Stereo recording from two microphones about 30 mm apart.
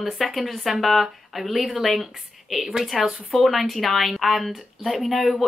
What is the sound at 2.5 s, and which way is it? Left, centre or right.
Speech, centre.